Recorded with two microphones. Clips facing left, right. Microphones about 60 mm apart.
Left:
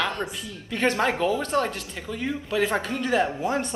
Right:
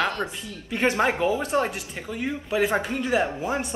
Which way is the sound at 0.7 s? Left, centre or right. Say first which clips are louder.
Right 1 dB; centre.